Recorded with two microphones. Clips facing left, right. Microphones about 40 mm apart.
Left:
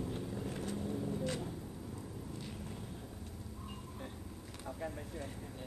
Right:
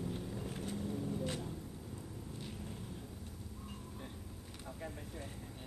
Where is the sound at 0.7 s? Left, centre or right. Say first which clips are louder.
Even; centre.